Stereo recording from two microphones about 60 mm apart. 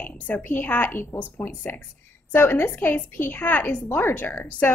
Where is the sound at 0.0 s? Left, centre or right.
Left.